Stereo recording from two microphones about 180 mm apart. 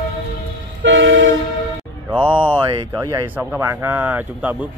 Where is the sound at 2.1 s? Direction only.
10° left (ahead or behind).